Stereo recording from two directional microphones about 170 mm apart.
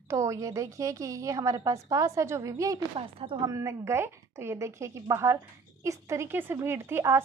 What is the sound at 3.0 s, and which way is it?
Speech, 30° right (ahead or behind).